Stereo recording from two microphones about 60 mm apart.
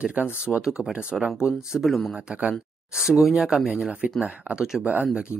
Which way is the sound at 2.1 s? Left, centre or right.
Centre.